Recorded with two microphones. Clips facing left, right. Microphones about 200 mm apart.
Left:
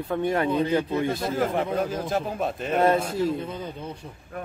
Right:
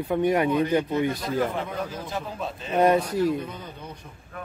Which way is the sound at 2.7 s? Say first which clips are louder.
Right 2 dB; 15° right (ahead or behind).